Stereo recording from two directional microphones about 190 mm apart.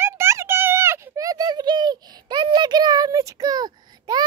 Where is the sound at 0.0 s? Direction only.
15° right (ahead or behind).